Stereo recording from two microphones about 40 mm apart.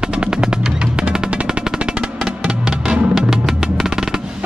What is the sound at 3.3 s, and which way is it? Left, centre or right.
Percussion, centre.